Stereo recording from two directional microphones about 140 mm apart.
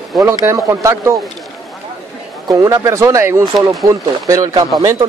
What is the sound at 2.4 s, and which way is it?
A man's voice, 25° right (ahead or behind).